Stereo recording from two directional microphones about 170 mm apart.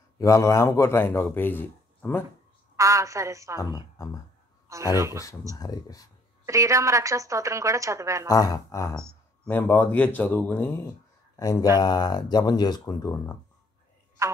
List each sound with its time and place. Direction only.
0.2 s a man's voice: 20° left (ahead or behind)
2.7 s a woman's voice: 20° right (ahead or behind)
3.5 s speech: 20° left (ahead or behind)
4.9 s a woman's voice: 15° right (ahead or behind)
5.6 s speech: 20° left (ahead or behind)
6.4 s a woman's voice: 20° right (ahead or behind)
8.3 s a man's voice: 20° left (ahead or behind)
11.8 s speech: 25° left (ahead or behind)